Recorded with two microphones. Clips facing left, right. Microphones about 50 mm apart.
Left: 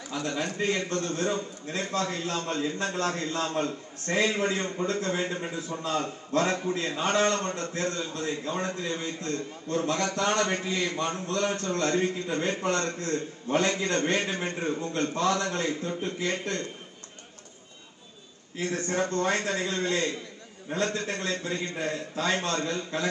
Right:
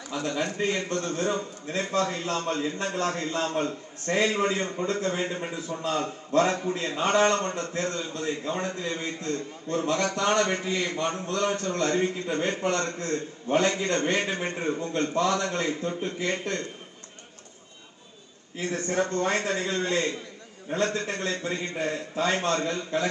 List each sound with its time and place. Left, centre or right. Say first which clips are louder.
0.1 s a man's voice: right 2 dB; right
5.7 s a man's voice: right 1 dB; centre
6.0 s a man's voice: right 6 dB; right
18.6 s a man's voice: right 1 dB; right